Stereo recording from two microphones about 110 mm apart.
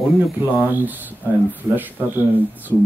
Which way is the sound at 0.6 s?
15° right (ahead or behind).